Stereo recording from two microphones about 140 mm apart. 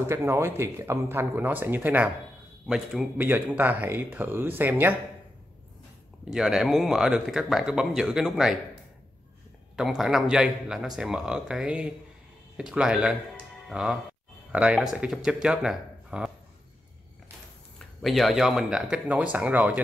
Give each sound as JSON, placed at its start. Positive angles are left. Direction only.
{"t": 0.0, "sound": "speech", "side_deg": -20}
{"t": 2.7, "sound": "speech", "side_deg": -5}
{"t": 3.2, "sound": "speech", "side_deg": -15}
{"t": 6.3, "sound": "speech", "side_deg": 0}
{"t": 9.8, "sound": "speech", "side_deg": -5}
{"t": 17.7, "sound": "speech", "side_deg": 0}